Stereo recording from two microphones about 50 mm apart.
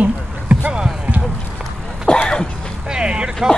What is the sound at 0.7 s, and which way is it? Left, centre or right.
Speech, centre.